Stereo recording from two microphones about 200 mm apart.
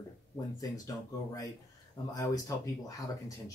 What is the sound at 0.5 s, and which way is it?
Speech, 15° left (ahead or behind).